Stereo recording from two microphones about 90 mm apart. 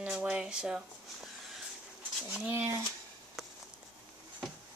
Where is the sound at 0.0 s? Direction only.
15° right (ahead or behind).